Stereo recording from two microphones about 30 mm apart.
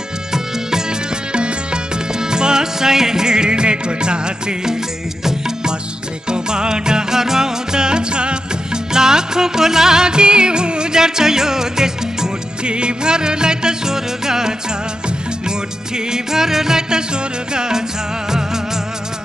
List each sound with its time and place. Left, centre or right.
0.3 s music: centre
1.3 s music: right
2.1 s music: right
6.2 s music: right
8.9 s music: right
12.6 s music: right
16.1 s music: centre